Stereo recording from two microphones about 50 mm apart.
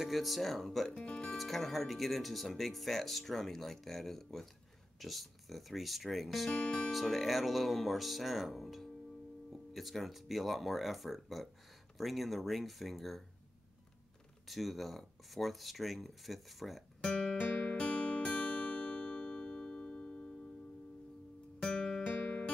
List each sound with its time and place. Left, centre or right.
0.0 s speech: centre
6.5 s speech: centre
6.9 s speech: centre
14.5 s speech: centre
17.0 s speech: centre
17.6 s music: left
21.5 s music: centre